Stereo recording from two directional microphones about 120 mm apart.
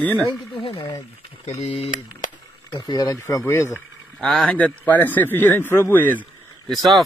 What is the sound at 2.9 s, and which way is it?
Speech, 35° left (ahead or behind).